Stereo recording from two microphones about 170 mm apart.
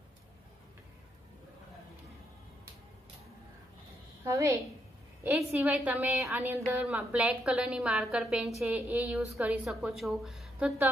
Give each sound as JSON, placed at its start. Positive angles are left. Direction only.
{"t": 4.2, "sound": "a woman's voice", "side_deg": -15}